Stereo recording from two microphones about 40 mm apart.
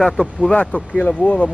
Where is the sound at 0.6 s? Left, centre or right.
Left.